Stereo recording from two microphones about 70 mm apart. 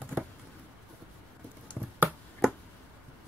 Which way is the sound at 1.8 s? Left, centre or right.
Centre.